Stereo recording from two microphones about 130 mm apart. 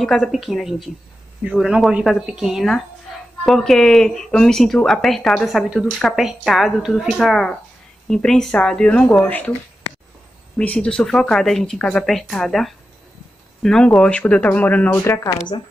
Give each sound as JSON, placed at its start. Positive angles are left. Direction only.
{"t": 0.0, "sound": "speech", "side_deg": 0}
{"t": 10.6, "sound": "speech", "side_deg": 10}